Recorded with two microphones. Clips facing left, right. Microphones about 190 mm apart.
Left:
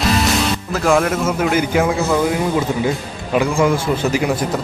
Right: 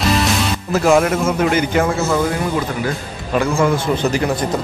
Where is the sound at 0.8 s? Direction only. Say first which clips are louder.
Right 1 dB; 5° right (ahead or behind).